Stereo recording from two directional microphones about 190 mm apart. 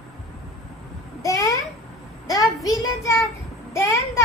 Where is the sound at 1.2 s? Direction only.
15° left (ahead or behind).